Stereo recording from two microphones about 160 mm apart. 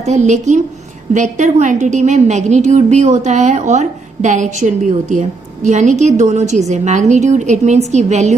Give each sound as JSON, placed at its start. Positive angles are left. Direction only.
{"t": 0.0, "sound": "a woman's voice", "side_deg": -45}